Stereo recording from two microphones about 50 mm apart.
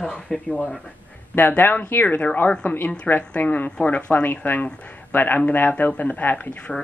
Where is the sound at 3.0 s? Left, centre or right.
Left.